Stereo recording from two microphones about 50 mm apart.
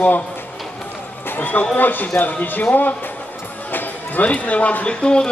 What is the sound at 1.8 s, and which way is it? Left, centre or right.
A man's voice, left.